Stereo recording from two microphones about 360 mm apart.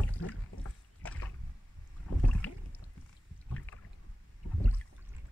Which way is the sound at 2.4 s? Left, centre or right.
Centre.